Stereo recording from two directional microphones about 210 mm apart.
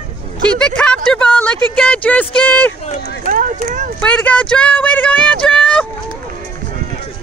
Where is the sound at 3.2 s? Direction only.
40° right (ahead or behind).